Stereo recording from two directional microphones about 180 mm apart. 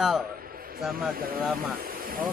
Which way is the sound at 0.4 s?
55° right (ahead or behind).